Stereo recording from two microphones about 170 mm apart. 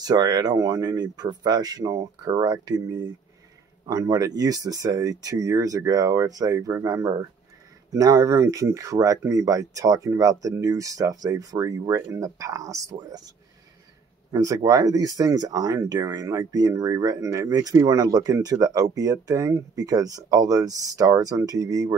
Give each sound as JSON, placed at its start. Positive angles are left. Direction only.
{"t": 0.0, "sound": "speech", "side_deg": -25}
{"t": 14.3, "sound": "speech", "side_deg": -20}